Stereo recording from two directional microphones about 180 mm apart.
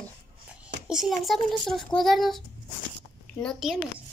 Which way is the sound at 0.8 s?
Centre (ahead or behind).